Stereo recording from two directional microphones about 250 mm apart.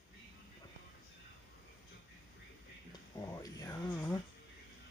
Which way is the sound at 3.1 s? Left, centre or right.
Centre.